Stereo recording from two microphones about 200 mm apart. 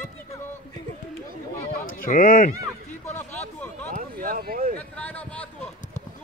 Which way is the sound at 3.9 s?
45° right (ahead or behind).